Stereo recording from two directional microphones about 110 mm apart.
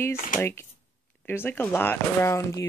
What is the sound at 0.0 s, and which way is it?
Speech, 25° left (ahead or behind).